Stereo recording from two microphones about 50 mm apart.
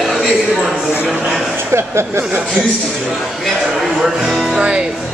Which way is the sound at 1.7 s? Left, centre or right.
Right.